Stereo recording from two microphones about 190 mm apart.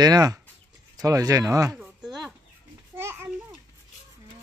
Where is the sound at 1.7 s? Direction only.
Centre (ahead or behind).